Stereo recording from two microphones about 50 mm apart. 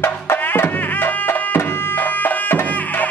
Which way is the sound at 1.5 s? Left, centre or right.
Left.